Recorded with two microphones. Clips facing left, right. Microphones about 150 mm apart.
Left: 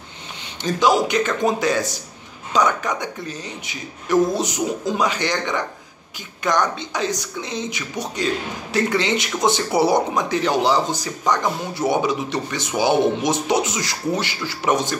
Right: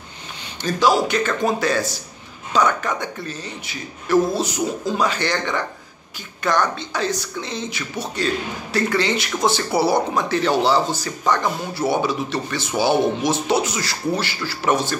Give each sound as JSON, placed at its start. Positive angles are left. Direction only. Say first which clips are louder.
{"t": 0.6, "sound": "a man's voice", "louder": "even", "side_deg": 20}